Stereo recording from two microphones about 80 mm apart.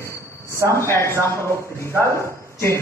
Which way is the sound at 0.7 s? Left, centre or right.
Left.